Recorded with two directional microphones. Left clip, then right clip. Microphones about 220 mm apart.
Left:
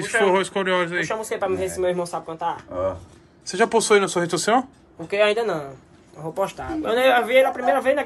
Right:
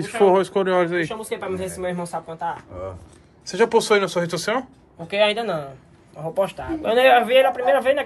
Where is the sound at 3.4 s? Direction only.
5° left (ahead or behind).